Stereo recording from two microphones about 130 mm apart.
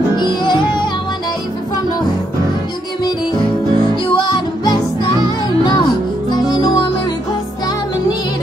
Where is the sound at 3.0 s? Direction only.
35° left (ahead or behind).